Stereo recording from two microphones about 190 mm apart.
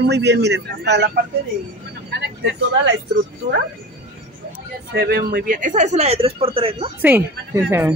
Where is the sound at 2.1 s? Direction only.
65° right (ahead or behind).